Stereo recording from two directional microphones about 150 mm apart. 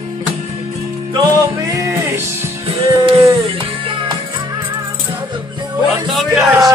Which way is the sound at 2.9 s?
35° right (ahead or behind).